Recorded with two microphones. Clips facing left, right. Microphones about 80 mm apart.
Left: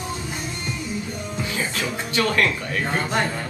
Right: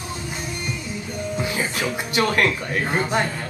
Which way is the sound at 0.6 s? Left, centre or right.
Centre.